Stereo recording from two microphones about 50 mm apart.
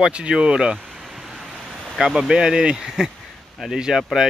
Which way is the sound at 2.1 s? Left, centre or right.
Centre.